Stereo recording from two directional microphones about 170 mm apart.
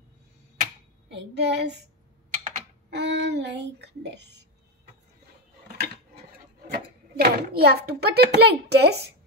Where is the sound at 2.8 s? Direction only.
90° right.